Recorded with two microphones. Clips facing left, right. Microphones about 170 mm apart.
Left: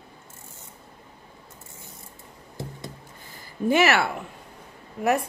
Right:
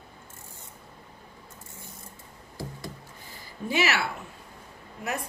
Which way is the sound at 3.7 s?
50° left (ahead or behind).